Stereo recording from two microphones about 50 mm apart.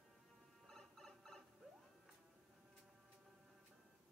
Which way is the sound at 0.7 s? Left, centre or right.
Centre.